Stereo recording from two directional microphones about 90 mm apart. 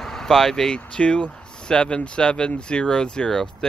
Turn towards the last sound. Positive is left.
turn(degrees=10)  # may be behind; listen again after turning